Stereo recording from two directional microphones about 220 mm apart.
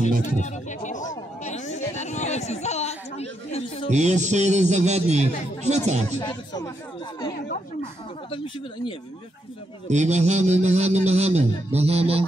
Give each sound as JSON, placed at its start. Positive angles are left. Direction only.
{"t": 0.2, "sound": "a sound", "side_deg": 35}
{"t": 3.9, "sound": "a man's voice", "side_deg": -30}
{"t": 6.1, "sound": "speech", "side_deg": 20}
{"t": 9.8, "sound": "a man's voice", "side_deg": -30}